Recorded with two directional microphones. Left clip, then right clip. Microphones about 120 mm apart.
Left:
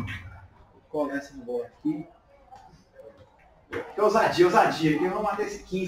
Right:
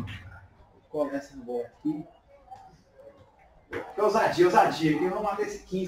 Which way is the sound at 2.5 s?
Centre (ahead or behind).